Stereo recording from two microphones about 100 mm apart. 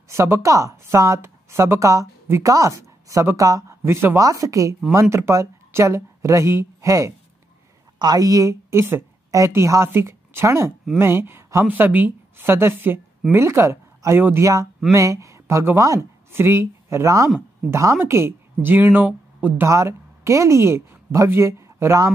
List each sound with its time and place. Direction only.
0.1 s a woman's voice: 30° right (ahead or behind)
19.7 s speech: 30° right (ahead or behind)